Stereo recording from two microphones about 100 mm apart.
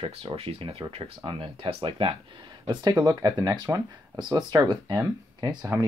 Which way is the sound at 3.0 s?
40° right (ahead or behind).